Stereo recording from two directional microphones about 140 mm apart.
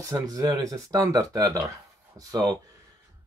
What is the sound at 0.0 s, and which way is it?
Speech, 25° right (ahead or behind).